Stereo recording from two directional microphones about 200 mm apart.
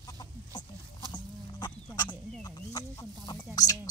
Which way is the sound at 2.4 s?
20° left (ahead or behind).